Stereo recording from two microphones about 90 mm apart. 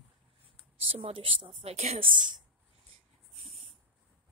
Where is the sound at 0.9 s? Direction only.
80° right.